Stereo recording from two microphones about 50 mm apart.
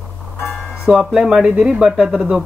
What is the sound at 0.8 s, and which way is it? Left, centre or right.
Speech, centre.